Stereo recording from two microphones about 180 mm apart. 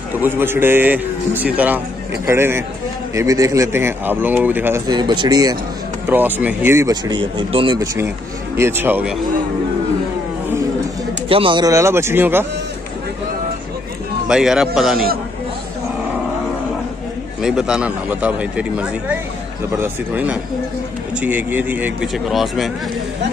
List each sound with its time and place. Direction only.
0.2 s speech: 10° right (ahead or behind)
4.8 s speech: 25° right (ahead or behind)
6.0 s speech: 10° right (ahead or behind)
11.2 s speech: 30° right (ahead or behind); by 12.4 s 10° right (ahead or behind)
14.2 s a man's voice: 5° right (ahead or behind)
17.4 s speech: 5° right (ahead or behind)